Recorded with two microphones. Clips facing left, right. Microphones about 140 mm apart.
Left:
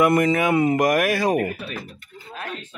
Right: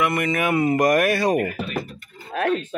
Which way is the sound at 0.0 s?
30° left (ahead or behind).